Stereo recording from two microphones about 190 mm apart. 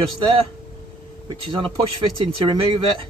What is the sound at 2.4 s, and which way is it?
Speech, 25° right (ahead or behind).